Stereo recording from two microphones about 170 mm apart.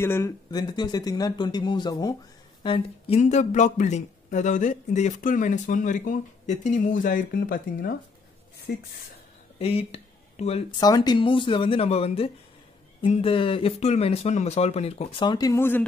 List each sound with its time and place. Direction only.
0.0 s speech: 15° left (ahead or behind); by 3.2 s 35° left (ahead or behind)
3.2 s a man's voice: 45° left (ahead or behind)
9.6 s a sound: 35° left (ahead or behind)
10.7 s speech: 25° left (ahead or behind)